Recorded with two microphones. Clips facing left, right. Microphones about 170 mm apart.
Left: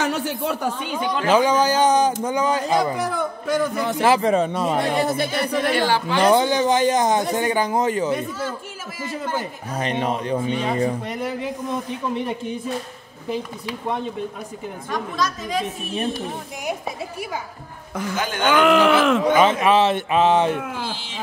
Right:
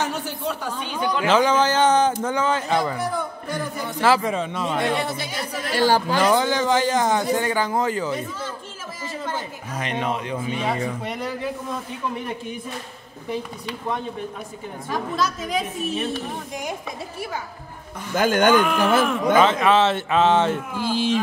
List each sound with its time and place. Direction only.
0.0 s a sound: 60° left (ahead or behind)
1.0 s speech: 10° left (ahead or behind)
3.0 s a man's voice: 85° left
4.2 s speech: 40° left (ahead or behind)
5.1 s a capella: 55° left (ahead or behind)
5.9 s a man's voice: 40° right (ahead or behind)
6.1 s a man's voice: 20° left (ahead or behind)
9.8 s speech: 35° left (ahead or behind)
11.2 s a man's voice: 20° left (ahead or behind)
14.9 s a woman's voice: 5° right (ahead or behind)
18.2 s speech: 50° right (ahead or behind)
18.6 s speech: 90° left
19.3 s speech: 15° left (ahead or behind)
20.9 s speech: 50° right (ahead or behind)